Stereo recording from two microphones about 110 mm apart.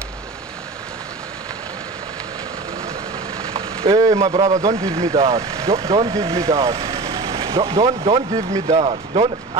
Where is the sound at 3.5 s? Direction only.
55° right (ahead or behind).